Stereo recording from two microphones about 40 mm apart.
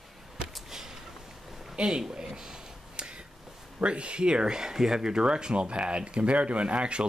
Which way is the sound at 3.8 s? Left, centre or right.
Right.